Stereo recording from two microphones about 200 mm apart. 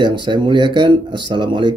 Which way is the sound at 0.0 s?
25° right (ahead or behind).